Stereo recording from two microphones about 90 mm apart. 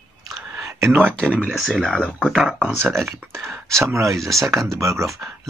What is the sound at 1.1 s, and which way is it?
Speech, 10° left (ahead or behind).